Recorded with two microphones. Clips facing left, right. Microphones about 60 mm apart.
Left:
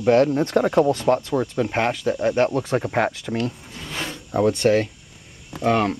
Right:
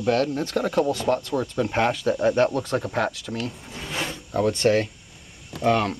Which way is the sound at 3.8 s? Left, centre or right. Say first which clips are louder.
Right 1 dB; centre.